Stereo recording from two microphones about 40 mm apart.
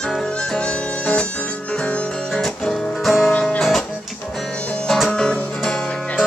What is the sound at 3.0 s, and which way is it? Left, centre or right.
Music, centre.